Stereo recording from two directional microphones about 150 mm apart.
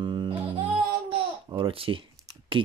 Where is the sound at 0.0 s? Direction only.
30° right (ahead or behind).